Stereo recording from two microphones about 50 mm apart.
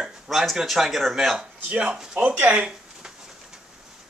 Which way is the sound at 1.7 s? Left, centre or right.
Right.